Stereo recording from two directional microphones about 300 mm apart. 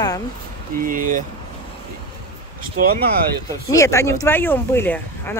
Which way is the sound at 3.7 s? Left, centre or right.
Centre.